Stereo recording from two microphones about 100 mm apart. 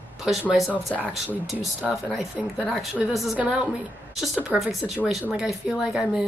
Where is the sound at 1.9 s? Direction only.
Centre (ahead or behind).